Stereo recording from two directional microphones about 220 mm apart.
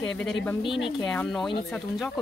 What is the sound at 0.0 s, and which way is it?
Speech, centre (ahead or behind).